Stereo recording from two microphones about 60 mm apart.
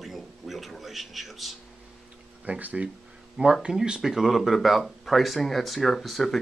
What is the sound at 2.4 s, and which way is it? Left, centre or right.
Speech, right.